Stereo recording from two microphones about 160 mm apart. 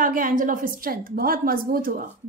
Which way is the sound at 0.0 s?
60° right (ahead or behind).